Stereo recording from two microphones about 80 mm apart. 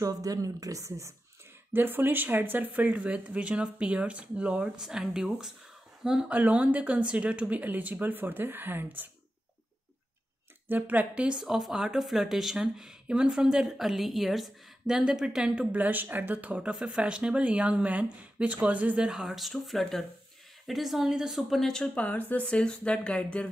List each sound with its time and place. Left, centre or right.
0.0 s a woman's voice: right
1.7 s speech: right
10.7 s speech: right; by 23.5 s centre